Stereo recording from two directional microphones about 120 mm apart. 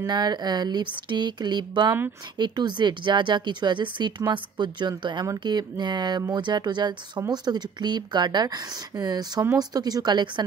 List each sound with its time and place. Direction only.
0.0 s speech: 35° right (ahead or behind)